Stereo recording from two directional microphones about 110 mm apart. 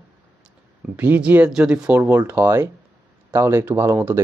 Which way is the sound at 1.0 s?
15° right (ahead or behind).